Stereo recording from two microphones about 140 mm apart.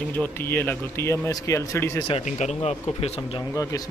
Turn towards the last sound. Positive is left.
turn(degrees=50)  # may be behind; listen again after turning